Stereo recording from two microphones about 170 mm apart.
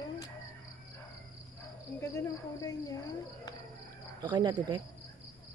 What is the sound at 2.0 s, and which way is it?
Speech, 15° left (ahead or behind).